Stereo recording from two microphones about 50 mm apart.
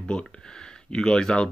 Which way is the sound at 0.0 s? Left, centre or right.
Centre.